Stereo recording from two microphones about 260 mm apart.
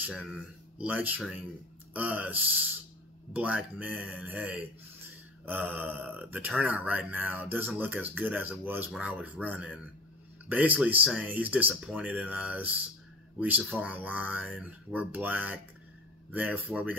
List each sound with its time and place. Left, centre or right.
0.0 s speech: centre